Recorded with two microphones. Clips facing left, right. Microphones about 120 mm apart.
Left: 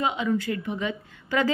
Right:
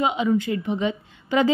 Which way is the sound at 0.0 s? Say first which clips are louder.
Right 4 dB; 20° right (ahead or behind).